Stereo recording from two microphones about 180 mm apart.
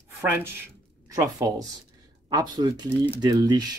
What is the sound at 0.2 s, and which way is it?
A woman's voice, 10° right (ahead or behind).